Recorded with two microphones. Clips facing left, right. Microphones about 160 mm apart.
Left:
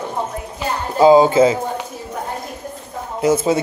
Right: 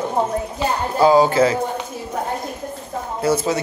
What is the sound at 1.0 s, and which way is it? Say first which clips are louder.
Speech: left 4 dB; 20° left (ahead or behind).